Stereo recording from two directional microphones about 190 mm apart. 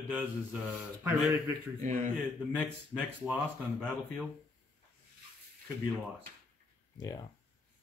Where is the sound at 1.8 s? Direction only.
45° right (ahead or behind).